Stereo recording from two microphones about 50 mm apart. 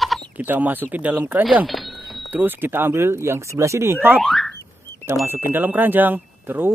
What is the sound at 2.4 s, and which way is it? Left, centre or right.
Speech, right.